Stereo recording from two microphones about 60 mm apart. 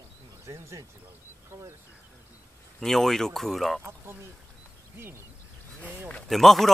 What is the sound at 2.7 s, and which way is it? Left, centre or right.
Speech, centre.